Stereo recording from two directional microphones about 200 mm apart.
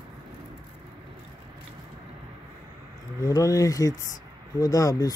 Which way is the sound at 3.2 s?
15° left (ahead or behind).